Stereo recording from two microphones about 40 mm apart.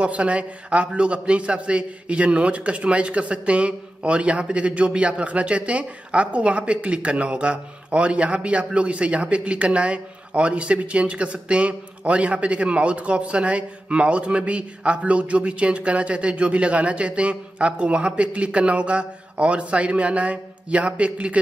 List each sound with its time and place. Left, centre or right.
0.0 s a man's voice: right